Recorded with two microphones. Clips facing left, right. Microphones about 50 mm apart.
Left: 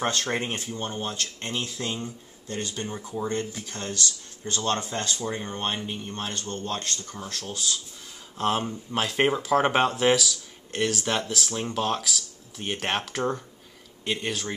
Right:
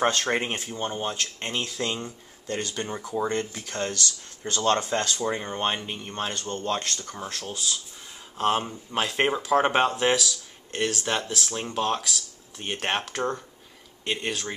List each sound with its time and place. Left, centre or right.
0.0 s speech: right
1.6 s speech: right
3.0 s speech: right
6.6 s speech: right
7.0 s speech: right; by 14.5 s centre